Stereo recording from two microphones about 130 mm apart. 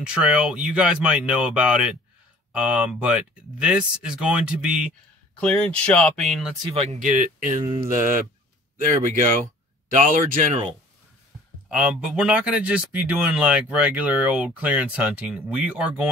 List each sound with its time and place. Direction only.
0.0 s speech: 5° right (ahead or behind)
5.4 s speech: 10° left (ahead or behind)
6.7 s speech: 50° right (ahead or behind)
7.0 s speech: 75° right (ahead or behind)
9.9 s speech: 90° right
11.7 s speech: 10° right (ahead or behind)